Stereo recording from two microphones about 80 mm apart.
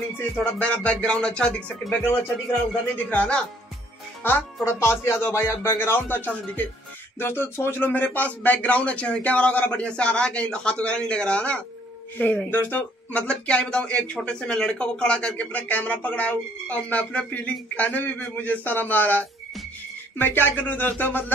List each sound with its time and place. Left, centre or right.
0.6 s speech: centre
3.1 s speech: centre
4.2 s speech: left